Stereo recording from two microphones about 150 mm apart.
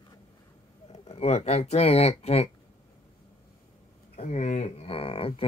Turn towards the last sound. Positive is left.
turn(degrees=40)  # may be behind; listen again after turning